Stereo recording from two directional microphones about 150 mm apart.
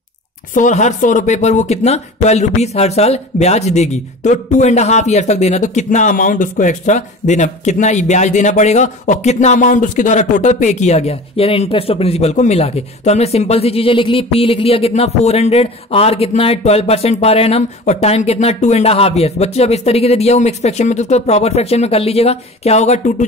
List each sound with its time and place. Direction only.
0.6 s speech: 55° left (ahead or behind)